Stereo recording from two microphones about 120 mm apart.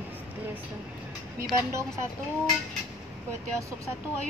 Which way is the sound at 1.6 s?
20° right (ahead or behind).